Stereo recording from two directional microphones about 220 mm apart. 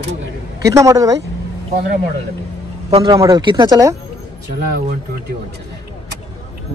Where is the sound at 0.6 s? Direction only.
15° right (ahead or behind).